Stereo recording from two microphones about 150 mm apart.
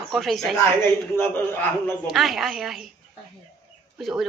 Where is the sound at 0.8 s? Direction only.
15° left (ahead or behind).